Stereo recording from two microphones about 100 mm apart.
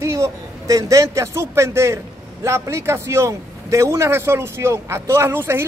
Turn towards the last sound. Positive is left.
turn(degrees=-25)  # may be behind; listen again after turning